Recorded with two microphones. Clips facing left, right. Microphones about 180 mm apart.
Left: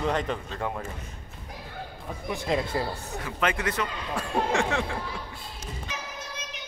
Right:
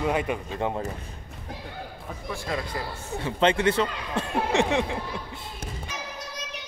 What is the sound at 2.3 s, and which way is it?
Speech, 20° left (ahead or behind).